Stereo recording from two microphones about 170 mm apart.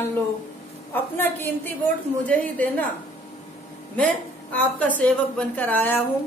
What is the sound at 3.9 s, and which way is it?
A woman's voice, 10° left (ahead or behind).